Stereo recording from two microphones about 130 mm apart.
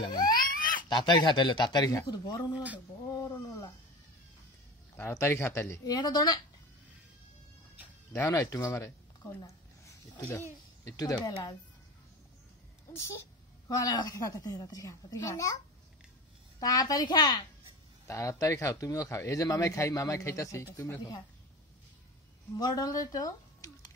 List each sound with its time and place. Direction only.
0.0 s a sound: 40° left (ahead or behind)
0.4 s a sound: 90° left
0.8 s speech: 35° left (ahead or behind)
3.2 s a sound: 25° left (ahead or behind)
4.9 s speech: 20° left (ahead or behind)
5.9 s speech: 30° left (ahead or behind)
8.1 s speech: 20° left (ahead or behind)
11.0 s speech: 30° left (ahead or behind)
12.9 s speech: 20° left (ahead or behind)
16.5 s speech: 30° left (ahead or behind)
22.6 s speech: 30° left (ahead or behind)